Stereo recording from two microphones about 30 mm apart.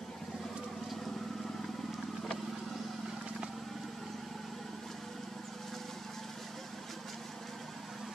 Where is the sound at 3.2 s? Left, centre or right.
Right.